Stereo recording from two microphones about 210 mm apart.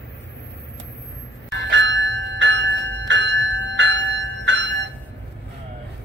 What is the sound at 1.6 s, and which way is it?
Bell, 60° right (ahead or behind).